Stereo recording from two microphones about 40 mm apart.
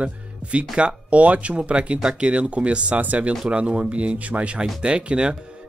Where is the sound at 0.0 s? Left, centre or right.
Right.